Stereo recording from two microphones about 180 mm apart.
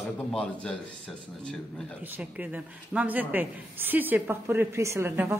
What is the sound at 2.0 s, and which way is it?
Speech, 10° right (ahead or behind).